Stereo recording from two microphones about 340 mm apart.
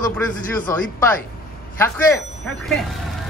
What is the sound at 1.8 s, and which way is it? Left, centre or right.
Speech, centre.